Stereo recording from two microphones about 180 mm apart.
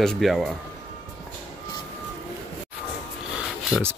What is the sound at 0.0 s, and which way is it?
Speech, centre (ahead or behind).